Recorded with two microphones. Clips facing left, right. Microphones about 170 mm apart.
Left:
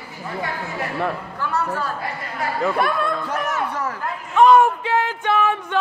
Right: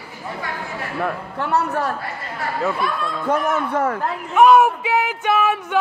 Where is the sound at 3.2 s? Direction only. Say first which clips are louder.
Right 4 dB; 55° right (ahead or behind).